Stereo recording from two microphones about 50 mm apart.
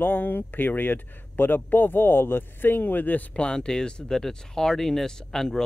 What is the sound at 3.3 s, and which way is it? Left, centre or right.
Speech, centre.